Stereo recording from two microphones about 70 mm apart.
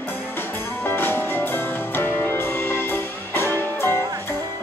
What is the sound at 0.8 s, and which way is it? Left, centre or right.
Music, left.